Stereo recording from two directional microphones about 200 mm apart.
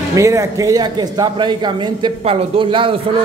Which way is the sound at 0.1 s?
15° right (ahead or behind).